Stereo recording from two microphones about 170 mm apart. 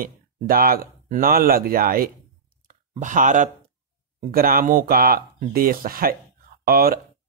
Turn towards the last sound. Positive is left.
turn(degrees=-60)  # may be behind; listen again after turning